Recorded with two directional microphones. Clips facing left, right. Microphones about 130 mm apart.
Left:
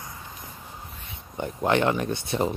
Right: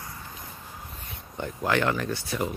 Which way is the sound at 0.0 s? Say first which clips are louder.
Left 1 dB; 20° left (ahead or behind).